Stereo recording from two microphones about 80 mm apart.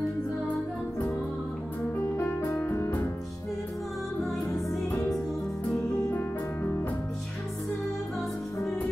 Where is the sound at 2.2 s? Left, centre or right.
Left.